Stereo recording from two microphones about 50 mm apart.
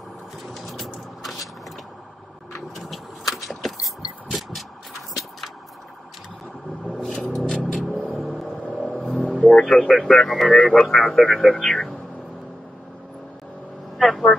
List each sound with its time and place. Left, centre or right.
0.5 s vehicle: centre
2.7 s vehicle: centre
7.0 s music: centre
9.2 s vehicle: left
9.8 s speech: centre
13.9 s vehicle: centre